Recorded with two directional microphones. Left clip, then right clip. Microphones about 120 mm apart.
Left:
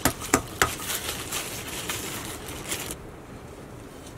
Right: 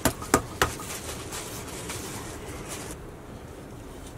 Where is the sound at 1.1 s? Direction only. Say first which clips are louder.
Left 4 dB; 25° left (ahead or behind).